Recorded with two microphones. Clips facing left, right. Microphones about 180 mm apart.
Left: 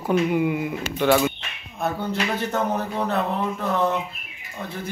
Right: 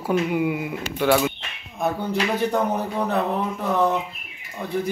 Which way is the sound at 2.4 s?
15° right (ahead or behind).